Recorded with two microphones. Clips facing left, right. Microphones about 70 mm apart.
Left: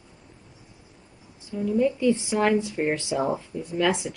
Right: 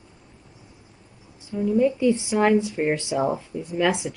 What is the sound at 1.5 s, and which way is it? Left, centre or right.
Speech, centre.